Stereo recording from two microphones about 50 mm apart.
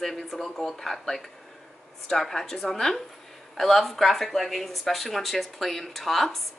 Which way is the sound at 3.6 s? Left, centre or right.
Centre.